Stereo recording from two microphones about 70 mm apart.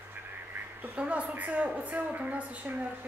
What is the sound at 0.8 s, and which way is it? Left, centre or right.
A woman's voice, centre.